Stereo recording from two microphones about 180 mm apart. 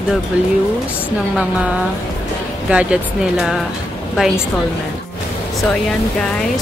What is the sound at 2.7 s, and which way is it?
Speech, 5° right (ahead or behind).